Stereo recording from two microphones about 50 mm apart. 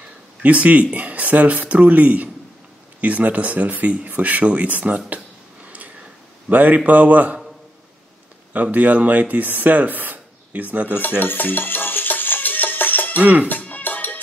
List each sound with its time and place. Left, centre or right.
0.4 s speech: right
8.7 s speech: right
11.0 s music: left
13.2 s speech: right
13.5 s music: left